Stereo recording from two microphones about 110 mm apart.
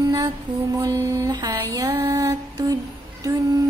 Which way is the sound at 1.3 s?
35° right (ahead or behind).